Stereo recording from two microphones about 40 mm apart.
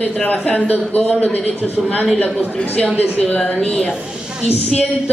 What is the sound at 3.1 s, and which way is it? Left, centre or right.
Speech, left.